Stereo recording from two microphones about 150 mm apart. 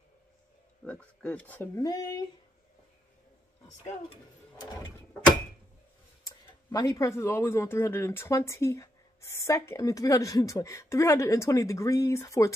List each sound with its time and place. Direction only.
0.8 s speech: 10° left (ahead or behind)
1.8 s speech: 25° left (ahead or behind)
3.6 s speech: 50° left (ahead or behind)
4.6 s speech: 20° left (ahead or behind)
6.2 s speech: 25° left (ahead or behind)